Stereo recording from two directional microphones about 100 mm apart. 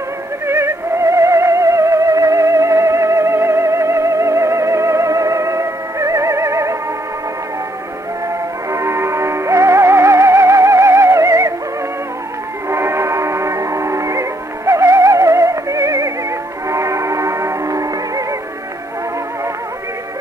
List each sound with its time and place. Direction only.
0.5 s music: 25° right (ahead or behind)
8.6 s music: 30° right (ahead or behind)
12.6 s music: 25° right (ahead or behind)